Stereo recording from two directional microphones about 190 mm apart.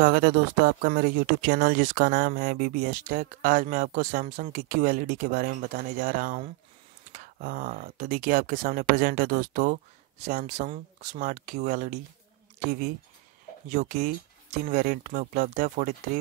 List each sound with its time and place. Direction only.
0.0 s speech: 50° right (ahead or behind)
13.7 s speech: 40° right (ahead or behind)